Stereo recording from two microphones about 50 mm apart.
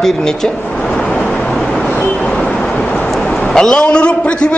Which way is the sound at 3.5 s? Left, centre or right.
Centre.